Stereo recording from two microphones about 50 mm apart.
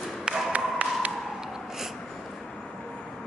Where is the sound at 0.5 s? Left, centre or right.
Right.